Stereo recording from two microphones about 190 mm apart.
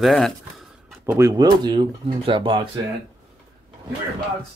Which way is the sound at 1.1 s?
20° right (ahead or behind).